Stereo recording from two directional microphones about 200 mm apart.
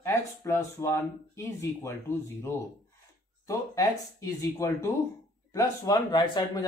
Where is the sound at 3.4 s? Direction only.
15° left (ahead or behind).